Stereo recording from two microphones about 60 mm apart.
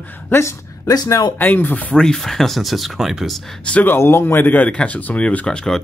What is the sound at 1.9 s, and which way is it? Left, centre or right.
Speech, centre.